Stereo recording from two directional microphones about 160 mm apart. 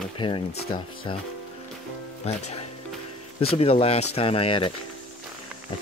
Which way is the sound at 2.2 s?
40° left (ahead or behind).